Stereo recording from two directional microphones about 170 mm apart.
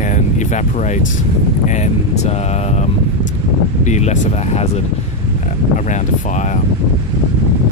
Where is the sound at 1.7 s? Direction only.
40° left (ahead or behind).